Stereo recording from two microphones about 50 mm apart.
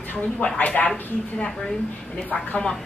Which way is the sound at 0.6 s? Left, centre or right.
Left.